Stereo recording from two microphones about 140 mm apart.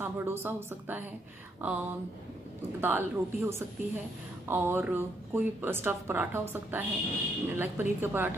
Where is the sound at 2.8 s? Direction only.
15° right (ahead or behind).